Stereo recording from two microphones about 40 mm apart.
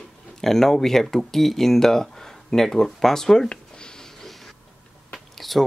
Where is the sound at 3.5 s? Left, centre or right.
Centre.